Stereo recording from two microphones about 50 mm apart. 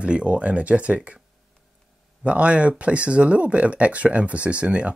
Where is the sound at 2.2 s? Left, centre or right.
Right.